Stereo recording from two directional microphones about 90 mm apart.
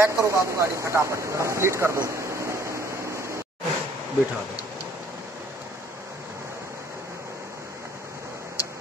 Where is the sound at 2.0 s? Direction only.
35° right (ahead or behind).